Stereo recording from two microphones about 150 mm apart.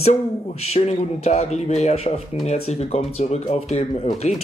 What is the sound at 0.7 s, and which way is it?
Speech, 45° left (ahead or behind).